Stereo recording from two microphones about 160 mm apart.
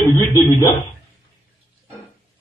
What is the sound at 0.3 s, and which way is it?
Speech, 20° left (ahead or behind).